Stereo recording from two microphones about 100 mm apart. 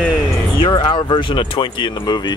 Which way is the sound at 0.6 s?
55° left (ahead or behind).